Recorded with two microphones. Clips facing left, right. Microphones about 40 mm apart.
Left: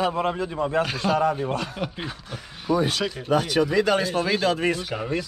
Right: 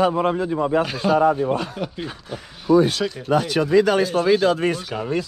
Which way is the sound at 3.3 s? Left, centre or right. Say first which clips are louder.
Right 1 dB; right.